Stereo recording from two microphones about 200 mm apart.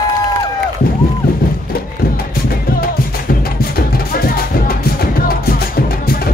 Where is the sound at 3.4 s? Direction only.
50° left (ahead or behind).